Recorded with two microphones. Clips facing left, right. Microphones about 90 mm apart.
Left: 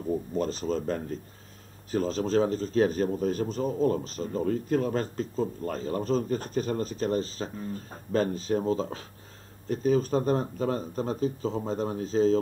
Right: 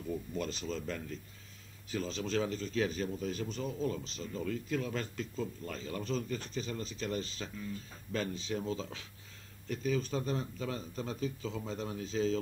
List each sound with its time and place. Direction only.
0.0 s speech: 40° left (ahead or behind)